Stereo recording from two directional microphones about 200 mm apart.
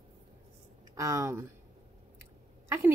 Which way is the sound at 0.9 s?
15° right (ahead or behind).